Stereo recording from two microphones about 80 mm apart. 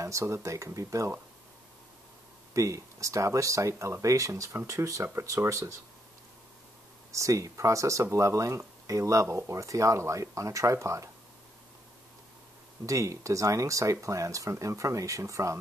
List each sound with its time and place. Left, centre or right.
0.0 s speech: right
2.5 s speech: right
7.1 s speech: right
12.8 s speech: right